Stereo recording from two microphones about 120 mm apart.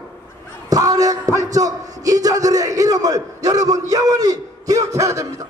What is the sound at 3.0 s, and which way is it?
A man's voice, 30° right (ahead or behind).